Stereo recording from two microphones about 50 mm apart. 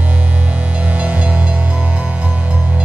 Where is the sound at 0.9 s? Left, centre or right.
Right.